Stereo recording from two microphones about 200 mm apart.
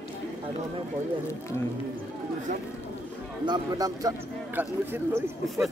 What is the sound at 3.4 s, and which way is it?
A man's voice, 20° right (ahead or behind).